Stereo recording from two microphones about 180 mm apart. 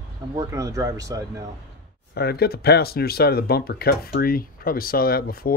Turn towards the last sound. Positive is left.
turn(degrees=55)  # may be behind; listen again after turning